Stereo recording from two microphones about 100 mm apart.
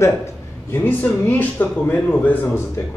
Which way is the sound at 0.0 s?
25° left (ahead or behind).